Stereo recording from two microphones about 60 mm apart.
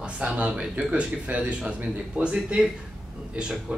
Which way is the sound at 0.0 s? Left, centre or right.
Centre.